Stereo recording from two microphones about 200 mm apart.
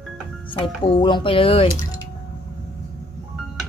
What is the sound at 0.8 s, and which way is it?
Speech, 25° left (ahead or behind).